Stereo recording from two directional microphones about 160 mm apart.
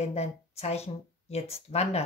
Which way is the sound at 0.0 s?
40° left (ahead or behind).